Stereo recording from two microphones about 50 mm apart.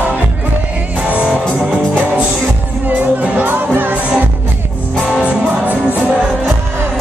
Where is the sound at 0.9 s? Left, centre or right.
Right.